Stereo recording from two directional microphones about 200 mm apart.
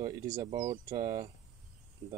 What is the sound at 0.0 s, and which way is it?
Speech, 20° right (ahead or behind).